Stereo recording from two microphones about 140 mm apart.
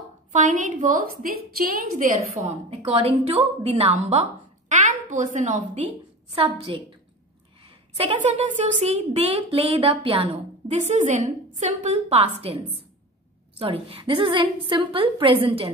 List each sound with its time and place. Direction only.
0.3 s a woman's voice: 60° right (ahead or behind); by 2.0 s 80° right
2.8 s a woman's voice: 40° right (ahead or behind); by 5.6 s 60° right (ahead or behind)
6.3 s a woman's voice: 40° right (ahead or behind)
8.2 s speech: 55° right (ahead or behind)
10.9 s a woman's voice: 60° right (ahead or behind)
13.6 s a woman's voice: 40° right (ahead or behind)